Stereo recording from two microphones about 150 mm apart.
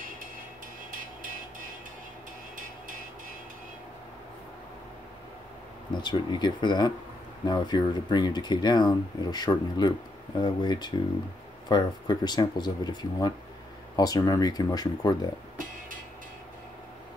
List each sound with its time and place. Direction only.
0.9 s music: 65° right (ahead or behind)
2.5 s vehicle: 65° right (ahead or behind)
5.9 s speech: 30° left (ahead or behind)
15.5 s music: 60° right (ahead or behind)